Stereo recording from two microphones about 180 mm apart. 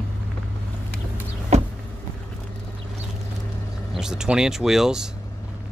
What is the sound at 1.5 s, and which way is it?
Vehicle, 40° right (ahead or behind).